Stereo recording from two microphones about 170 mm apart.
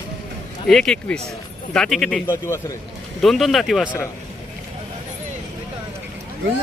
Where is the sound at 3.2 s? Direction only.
Centre (ahead or behind).